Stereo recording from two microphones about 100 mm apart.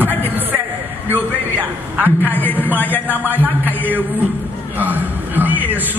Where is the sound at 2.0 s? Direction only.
20° right (ahead or behind).